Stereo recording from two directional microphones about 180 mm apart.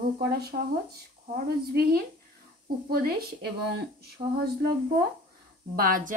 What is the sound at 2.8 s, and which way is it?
Speech, 55° right (ahead or behind).